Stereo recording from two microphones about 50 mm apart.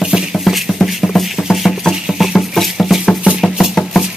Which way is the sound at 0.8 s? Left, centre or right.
Centre.